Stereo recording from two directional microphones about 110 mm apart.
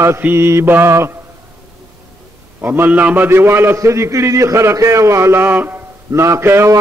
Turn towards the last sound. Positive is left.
turn(degrees=-25)  # may be behind; listen again after turning